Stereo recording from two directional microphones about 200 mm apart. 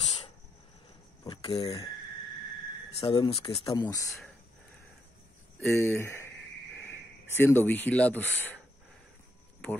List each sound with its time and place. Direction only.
1.2 s speech: 20° left (ahead or behind)
3.0 s speech: 25° left (ahead or behind)
3.6 s speech: 20° left (ahead or behind)
5.7 s speech: 15° left (ahead or behind)
7.3 s speech: 10° left (ahead or behind)